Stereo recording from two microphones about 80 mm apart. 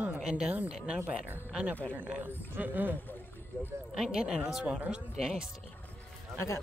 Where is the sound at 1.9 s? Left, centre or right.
Right.